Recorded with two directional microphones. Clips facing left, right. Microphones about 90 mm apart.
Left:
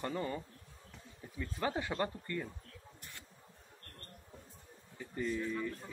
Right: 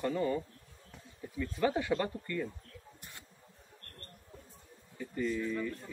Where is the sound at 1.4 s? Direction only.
25° left (ahead or behind).